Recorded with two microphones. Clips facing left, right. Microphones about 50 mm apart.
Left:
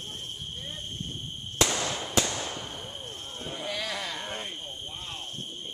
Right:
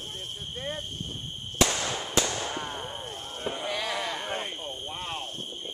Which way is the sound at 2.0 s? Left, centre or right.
Centre.